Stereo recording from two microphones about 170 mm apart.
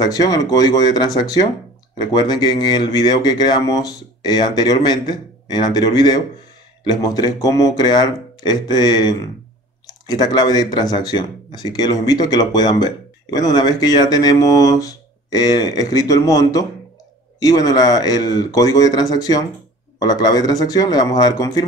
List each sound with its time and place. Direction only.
0.0 s speech: 20° left (ahead or behind)